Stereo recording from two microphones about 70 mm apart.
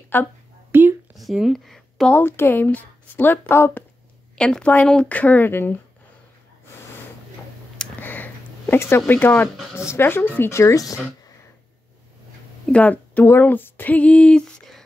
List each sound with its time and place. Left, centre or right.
0.1 s speech: left
0.7 s a sound: right
1.1 s a sound: centre
2.2 s speech: left
4.4 s a woman's voice: centre; by 5.8 s left
8.0 s a sound: left
9.0 s speech: left
10.5 s speech: left
12.7 s speech: left